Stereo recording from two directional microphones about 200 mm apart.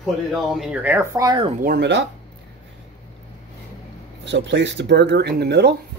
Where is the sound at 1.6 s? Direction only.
55° right (ahead or behind).